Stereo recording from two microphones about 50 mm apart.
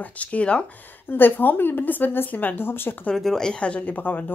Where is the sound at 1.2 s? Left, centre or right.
Left.